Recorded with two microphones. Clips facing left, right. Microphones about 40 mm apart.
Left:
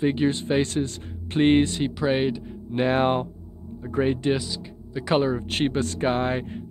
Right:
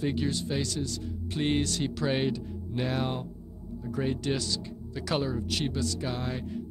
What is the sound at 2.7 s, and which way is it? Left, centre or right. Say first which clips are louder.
Speech: left 10 dB; left.